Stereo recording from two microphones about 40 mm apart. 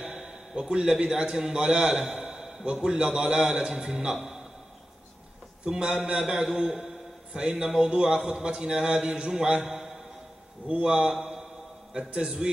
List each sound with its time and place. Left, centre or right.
0.0 s a man's voice: centre
5.7 s a man's voice: right
6.1 s a man's voice: centre
9.7 s a sound: centre
10.7 s a man's voice: right